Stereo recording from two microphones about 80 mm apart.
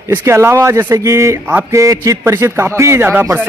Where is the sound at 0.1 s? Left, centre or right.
Right.